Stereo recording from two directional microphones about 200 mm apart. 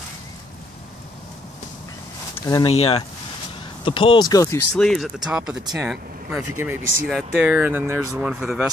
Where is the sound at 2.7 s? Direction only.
30° left (ahead or behind).